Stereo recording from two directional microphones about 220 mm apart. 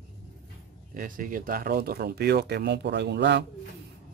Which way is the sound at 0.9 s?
40° right (ahead or behind).